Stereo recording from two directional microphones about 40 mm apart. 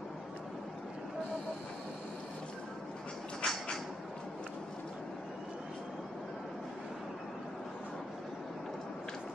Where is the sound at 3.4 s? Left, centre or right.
Left.